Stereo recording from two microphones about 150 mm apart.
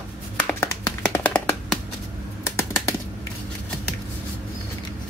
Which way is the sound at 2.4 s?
15° left (ahead or behind).